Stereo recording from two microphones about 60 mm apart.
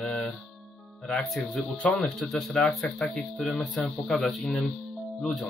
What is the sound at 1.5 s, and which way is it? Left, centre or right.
Mantra, centre.